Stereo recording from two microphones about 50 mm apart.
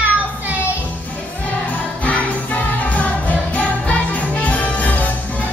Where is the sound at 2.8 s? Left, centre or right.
Left.